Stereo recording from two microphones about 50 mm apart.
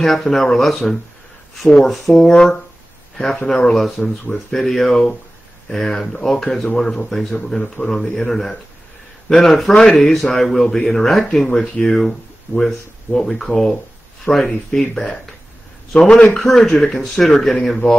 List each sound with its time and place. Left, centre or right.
0.0 s speech: centre
1.8 s a man's voice: centre
4.0 s speech: left
4.5 s a man's voice: centre
11.8 s speech: centre
16.1 s speech: left
16.4 s a man's voice: centre